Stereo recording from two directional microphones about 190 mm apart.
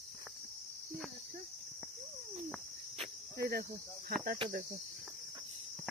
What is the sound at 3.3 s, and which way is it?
Cricket, 55° right (ahead or behind).